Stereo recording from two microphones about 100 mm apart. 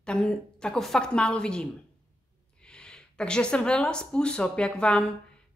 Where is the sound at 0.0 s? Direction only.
10° left (ahead or behind).